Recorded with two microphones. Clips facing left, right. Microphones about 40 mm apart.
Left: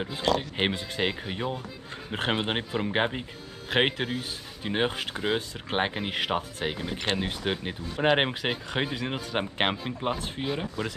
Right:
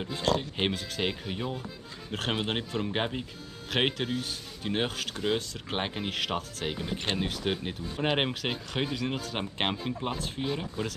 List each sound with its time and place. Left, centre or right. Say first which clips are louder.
0.4 s speech: left 2 dB; left
10.1 s speech: left 1 dB; left
10.4 s speech: left 1 dB; centre